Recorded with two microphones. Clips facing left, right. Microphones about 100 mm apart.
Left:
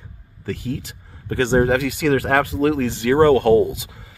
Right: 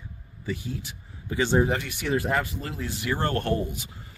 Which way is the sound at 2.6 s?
85° left.